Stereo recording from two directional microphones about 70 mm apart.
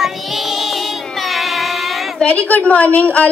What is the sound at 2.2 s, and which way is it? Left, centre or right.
A woman's voice, centre.